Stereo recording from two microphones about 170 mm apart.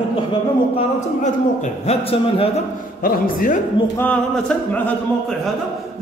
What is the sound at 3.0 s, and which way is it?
Speech, 50° left (ahead or behind).